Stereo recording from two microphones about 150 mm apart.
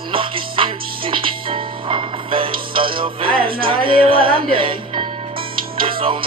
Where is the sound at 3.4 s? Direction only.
75° right (ahead or behind).